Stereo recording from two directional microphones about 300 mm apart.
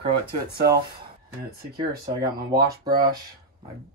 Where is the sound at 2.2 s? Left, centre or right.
Centre.